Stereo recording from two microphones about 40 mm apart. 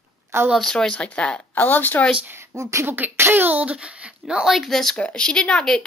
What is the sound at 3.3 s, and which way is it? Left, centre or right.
Speech, right.